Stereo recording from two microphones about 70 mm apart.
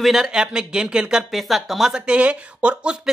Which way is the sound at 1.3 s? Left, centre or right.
Centre.